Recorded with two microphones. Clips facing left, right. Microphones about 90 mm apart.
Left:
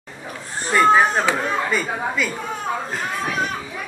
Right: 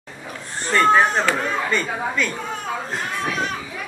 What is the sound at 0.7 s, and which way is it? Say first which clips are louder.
Speech: left 1 dB; 10° left (ahead or behind).